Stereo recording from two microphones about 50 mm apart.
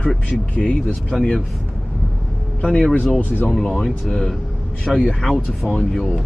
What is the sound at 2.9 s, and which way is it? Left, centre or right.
Speech, left.